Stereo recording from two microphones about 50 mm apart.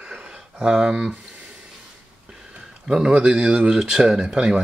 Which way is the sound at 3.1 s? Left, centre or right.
Centre.